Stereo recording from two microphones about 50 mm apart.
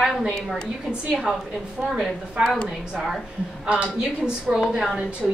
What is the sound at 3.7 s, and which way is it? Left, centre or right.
Speech, right.